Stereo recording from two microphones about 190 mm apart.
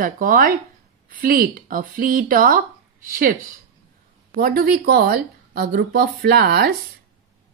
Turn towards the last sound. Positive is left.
turn(degrees=-55)  # may be behind; listen again after turning